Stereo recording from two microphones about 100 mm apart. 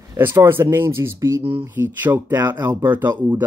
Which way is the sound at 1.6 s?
20° right (ahead or behind).